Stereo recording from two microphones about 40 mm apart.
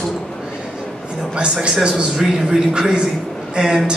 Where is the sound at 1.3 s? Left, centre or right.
Right.